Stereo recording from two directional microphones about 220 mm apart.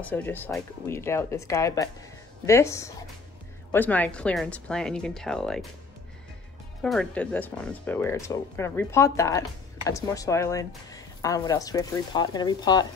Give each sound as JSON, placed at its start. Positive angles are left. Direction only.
{"t": 0.0, "sound": "speech", "side_deg": 10}
{"t": 6.8, "sound": "speech", "side_deg": 5}